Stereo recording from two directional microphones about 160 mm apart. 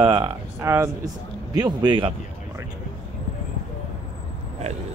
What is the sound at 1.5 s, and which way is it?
Speech, 25° right (ahead or behind).